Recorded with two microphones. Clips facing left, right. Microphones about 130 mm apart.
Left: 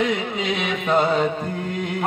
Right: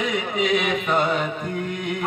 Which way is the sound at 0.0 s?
30° left (ahead or behind).